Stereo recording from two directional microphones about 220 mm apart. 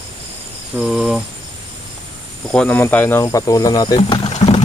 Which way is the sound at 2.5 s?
5° left (ahead or behind).